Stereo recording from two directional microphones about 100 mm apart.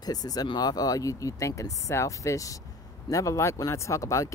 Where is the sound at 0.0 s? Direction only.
40° left (ahead or behind).